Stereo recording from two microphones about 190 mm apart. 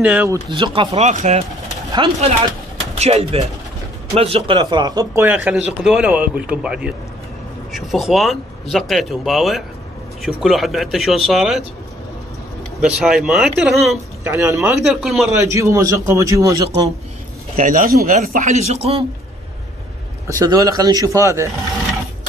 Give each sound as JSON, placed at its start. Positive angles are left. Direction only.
{"t": 0.0, "sound": "speech", "side_deg": -10}
{"t": 0.5, "sound": "speech", "side_deg": -25}
{"t": 1.9, "sound": "speech", "side_deg": -25}
{"t": 12.8, "sound": "speech", "side_deg": -5}
{"t": 14.2, "sound": "speech", "side_deg": -15}
{"t": 14.8, "sound": "speech", "side_deg": 0}
{"t": 15.3, "sound": "speech", "side_deg": -15}
{"t": 17.6, "sound": "a man's voice", "side_deg": -45}
{"t": 20.2, "sound": "speech", "side_deg": -20}